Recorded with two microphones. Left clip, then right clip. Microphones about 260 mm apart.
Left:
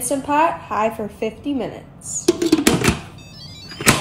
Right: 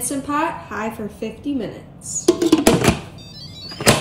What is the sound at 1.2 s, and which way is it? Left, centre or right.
Speech, left.